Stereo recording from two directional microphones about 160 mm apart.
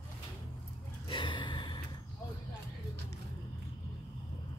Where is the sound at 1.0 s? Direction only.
30° left (ahead or behind).